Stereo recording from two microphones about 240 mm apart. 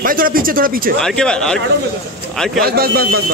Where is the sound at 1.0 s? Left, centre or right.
Centre.